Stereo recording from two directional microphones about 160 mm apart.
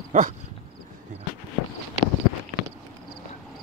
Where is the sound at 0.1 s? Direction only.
45° right (ahead or behind).